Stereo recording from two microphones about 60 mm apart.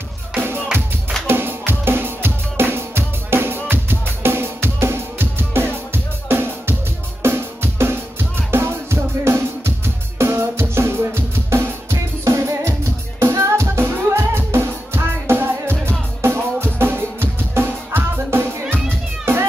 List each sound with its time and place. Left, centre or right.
0.3 s music: right